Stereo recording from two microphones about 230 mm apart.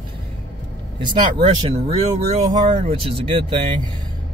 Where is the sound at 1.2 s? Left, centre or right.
Right.